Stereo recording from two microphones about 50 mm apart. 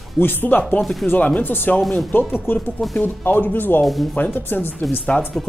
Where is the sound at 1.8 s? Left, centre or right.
Centre.